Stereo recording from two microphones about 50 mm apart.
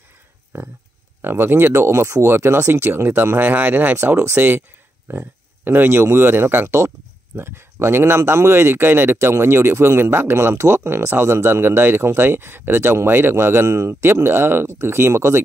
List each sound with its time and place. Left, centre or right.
0.5 s speech: right
1.8 s speech: right
8.2 s speech: right
10.5 s speech: right
14.0 s speech: right